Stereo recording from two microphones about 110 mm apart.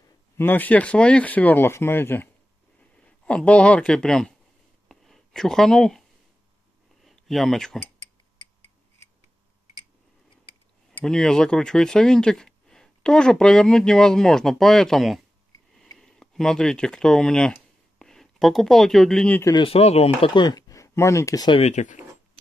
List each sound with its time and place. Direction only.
0.4 s speech: 15° left (ahead or behind)
3.0 s speech: 10° left (ahead or behind)
4.8 s a sound: centre (ahead or behind)
11.0 s speech: 5° left (ahead or behind)
19.5 s speech: 60° left (ahead or behind)
20.3 s speech: 35° left (ahead or behind)
21.5 s speech: 85° left